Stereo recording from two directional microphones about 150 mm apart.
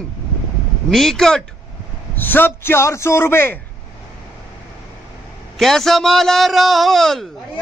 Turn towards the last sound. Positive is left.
turn(degrees=0)  # may be behind; listen again after turning